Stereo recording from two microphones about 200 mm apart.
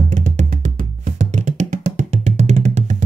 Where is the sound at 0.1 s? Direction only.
40° right (ahead or behind).